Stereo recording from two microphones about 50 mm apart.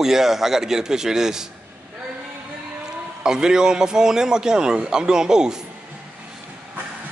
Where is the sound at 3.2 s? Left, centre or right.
Centre.